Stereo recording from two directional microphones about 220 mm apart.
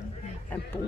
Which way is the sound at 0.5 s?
10° left (ahead or behind).